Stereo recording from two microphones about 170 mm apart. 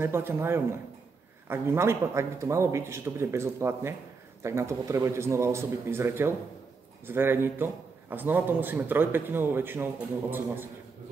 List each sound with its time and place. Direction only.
0.0 s a man's voice: 15° right (ahead or behind)